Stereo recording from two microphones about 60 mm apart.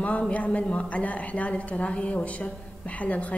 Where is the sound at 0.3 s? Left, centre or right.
Left.